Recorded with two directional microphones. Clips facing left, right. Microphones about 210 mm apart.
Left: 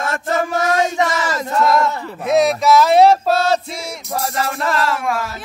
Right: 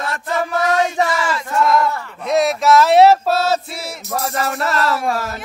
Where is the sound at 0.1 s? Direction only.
45° left (ahead or behind).